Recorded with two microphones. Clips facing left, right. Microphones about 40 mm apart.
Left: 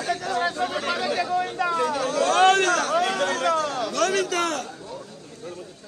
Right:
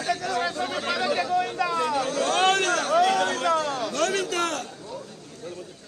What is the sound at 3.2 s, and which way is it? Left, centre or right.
Speech, left.